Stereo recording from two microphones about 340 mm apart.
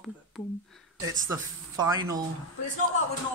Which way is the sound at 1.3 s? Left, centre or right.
Centre.